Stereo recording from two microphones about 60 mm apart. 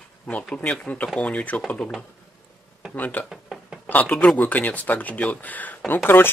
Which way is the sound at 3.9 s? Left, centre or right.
Left.